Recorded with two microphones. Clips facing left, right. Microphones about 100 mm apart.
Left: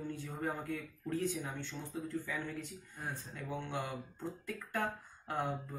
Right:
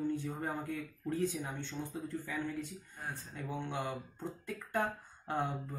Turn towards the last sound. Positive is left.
turn(degrees=-20)  # may be behind; listen again after turning